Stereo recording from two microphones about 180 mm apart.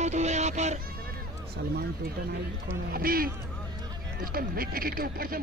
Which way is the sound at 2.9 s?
55° right (ahead or behind).